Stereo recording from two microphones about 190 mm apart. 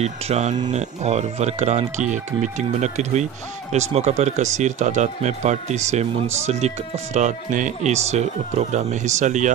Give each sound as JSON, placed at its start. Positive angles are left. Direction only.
{"t": 0.0, "sound": "speech", "side_deg": -35}